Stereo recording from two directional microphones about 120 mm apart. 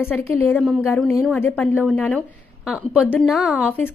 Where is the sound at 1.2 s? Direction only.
15° left (ahead or behind).